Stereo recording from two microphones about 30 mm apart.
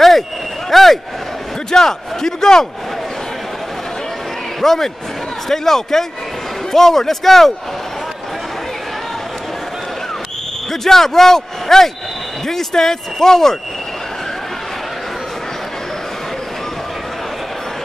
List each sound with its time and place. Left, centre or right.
0.7 s a sound: centre
1.7 s a man's voice: centre
4.6 s speech: centre
10.7 s speech: centre